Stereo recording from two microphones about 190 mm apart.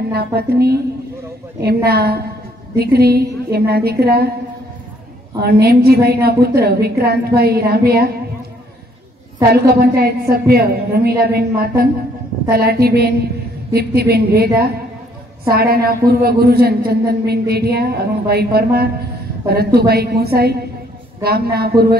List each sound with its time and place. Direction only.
0.1 s a man's voice: 55° right (ahead or behind)
5.4 s a man's voice: 55° right (ahead or behind)
9.5 s a man's voice: 55° right (ahead or behind)